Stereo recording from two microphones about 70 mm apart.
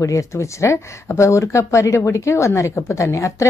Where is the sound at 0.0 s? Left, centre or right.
Left.